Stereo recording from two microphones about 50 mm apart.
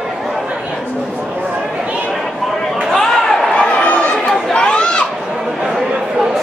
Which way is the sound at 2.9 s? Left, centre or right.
Centre.